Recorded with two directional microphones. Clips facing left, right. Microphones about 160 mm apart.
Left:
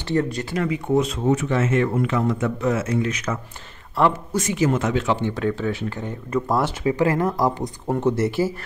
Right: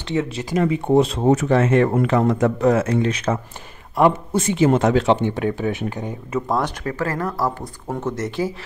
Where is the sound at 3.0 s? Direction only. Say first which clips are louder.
Right 4 dB; 30° right (ahead or behind).